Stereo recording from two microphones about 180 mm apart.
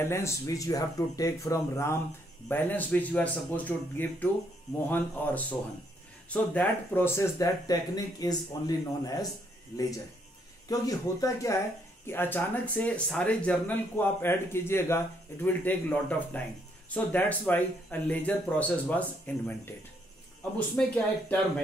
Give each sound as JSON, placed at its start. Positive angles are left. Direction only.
{"t": 0.0, "sound": "speech", "side_deg": 15}
{"t": 10.7, "sound": "speech", "side_deg": 20}